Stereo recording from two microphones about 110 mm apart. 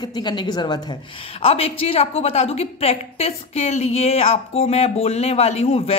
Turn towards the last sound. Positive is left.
turn(degrees=65)  # may be behind; listen again after turning